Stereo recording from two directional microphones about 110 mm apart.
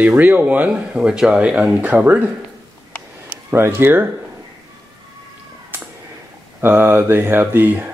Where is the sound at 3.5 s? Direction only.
20° right (ahead or behind).